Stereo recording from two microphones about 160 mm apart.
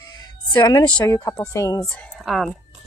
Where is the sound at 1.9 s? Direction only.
Centre (ahead or behind).